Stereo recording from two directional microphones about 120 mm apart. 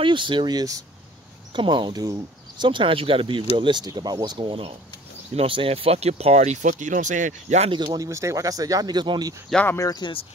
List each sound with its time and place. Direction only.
0.0 s speech: 45° right (ahead or behind)
2.6 s speech: 45° right (ahead or behind); by 7.7 s 70° right (ahead or behind)
7.7 s speech: 35° right (ahead or behind)
9.7 s speech: 30° left (ahead or behind)